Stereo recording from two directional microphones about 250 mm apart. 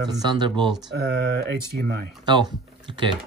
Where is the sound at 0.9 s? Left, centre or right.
Right.